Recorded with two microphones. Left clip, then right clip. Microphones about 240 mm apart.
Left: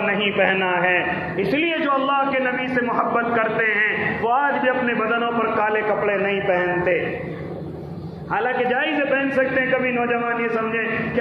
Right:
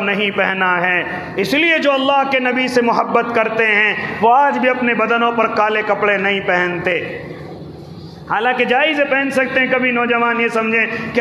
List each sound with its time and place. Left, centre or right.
0.0 s a man's voice: right
8.3 s a man's voice: right